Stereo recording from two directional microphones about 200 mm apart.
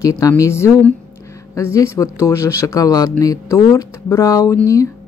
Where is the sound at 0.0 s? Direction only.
15° left (ahead or behind).